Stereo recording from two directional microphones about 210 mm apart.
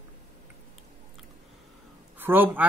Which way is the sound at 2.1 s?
10° right (ahead or behind).